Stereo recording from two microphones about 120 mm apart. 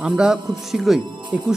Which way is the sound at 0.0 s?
5° right (ahead or behind).